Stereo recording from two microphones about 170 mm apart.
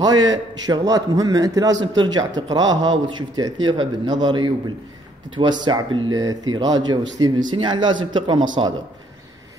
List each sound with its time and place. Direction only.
0.3 s speech: 25° right (ahead or behind)